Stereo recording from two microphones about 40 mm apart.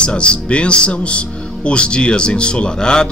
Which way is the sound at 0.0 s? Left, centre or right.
Left.